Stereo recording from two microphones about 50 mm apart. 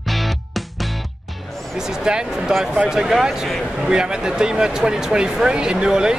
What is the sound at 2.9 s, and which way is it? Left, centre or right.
Speech, centre.